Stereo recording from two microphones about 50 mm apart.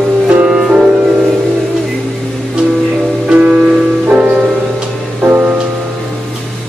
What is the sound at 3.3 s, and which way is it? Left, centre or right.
Music, right.